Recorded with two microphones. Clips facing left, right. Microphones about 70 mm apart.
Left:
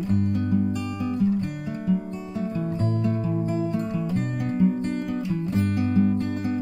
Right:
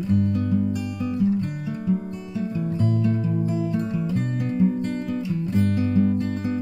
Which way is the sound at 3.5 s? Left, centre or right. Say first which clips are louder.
Right 1 dB; left.